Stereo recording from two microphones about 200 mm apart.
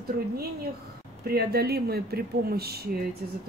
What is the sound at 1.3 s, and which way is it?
Speech, 50° right (ahead or behind).